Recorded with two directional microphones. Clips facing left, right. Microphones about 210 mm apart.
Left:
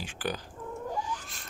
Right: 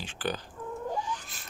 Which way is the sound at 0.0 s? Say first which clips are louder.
Right 1 dB; 10° left (ahead or behind).